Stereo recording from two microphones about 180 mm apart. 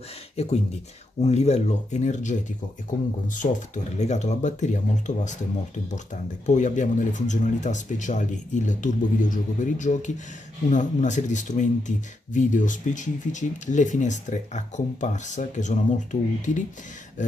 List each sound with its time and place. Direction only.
0.4 s speech: 35° left (ahead or behind)
3.3 s speech: 45° left (ahead or behind)
6.4 s speech: 40° left (ahead or behind)